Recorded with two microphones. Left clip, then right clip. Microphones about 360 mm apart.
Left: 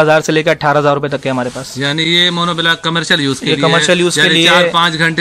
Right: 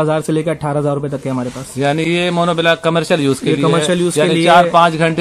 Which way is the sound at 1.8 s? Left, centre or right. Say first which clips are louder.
Left 3 dB; centre.